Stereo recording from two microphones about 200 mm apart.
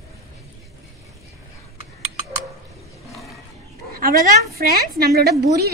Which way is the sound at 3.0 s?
Centre (ahead or behind).